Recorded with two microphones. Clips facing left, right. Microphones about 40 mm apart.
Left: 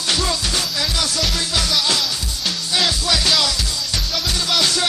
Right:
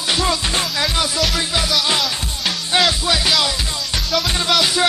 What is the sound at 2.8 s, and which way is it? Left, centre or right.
Music, centre.